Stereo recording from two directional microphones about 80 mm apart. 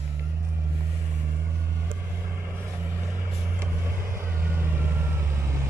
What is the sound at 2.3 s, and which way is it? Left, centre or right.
Vehicle, right.